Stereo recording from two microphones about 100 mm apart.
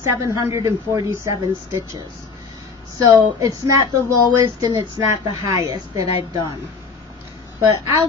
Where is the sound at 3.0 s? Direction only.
35° right (ahead or behind).